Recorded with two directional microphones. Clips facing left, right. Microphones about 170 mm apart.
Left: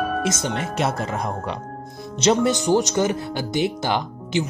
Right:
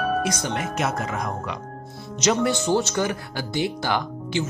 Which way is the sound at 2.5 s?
15° left (ahead or behind).